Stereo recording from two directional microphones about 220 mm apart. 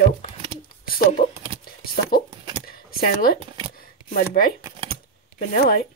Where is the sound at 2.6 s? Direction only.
40° left (ahead or behind).